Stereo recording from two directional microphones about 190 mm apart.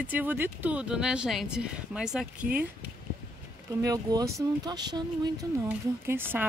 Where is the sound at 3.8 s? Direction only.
20° right (ahead or behind).